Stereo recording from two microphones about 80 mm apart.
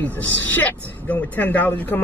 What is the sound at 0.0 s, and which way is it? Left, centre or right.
Speech, left.